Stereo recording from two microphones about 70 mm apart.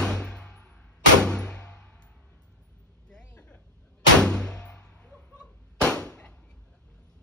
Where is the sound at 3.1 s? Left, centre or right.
Centre.